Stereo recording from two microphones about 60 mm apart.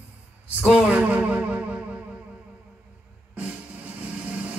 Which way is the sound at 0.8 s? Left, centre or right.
Right.